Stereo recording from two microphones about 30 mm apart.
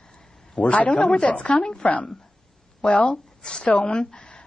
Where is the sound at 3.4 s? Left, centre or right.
Left.